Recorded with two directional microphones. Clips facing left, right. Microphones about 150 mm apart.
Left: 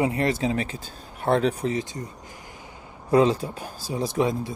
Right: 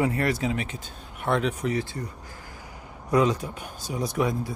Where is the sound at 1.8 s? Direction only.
20° left (ahead or behind).